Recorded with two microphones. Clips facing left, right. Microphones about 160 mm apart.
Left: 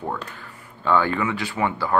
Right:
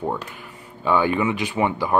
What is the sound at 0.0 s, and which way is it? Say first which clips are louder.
Speech: right 3 dB; 15° right (ahead or behind).